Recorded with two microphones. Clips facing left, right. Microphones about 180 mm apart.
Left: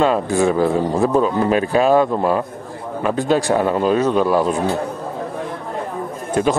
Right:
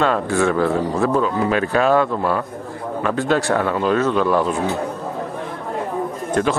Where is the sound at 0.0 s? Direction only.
15° left (ahead or behind).